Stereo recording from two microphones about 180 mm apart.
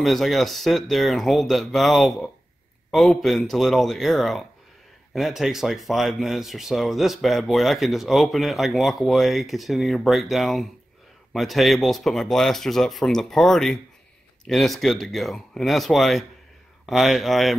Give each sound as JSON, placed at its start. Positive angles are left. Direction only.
{"t": 0.0, "sound": "speech", "side_deg": 0}